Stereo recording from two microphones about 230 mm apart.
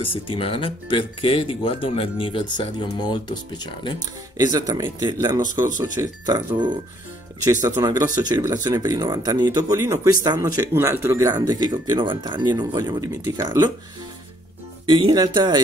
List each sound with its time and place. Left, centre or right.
0.0 s speech: left
4.4 s speech: centre
14.9 s speech: right